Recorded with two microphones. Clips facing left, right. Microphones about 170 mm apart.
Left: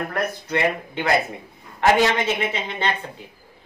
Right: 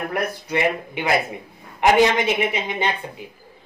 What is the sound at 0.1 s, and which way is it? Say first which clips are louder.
Speech: right 1 dB; 15° right (ahead or behind).